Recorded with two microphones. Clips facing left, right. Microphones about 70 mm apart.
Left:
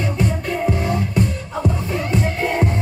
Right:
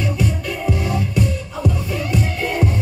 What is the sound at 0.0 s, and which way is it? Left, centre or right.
Music, left.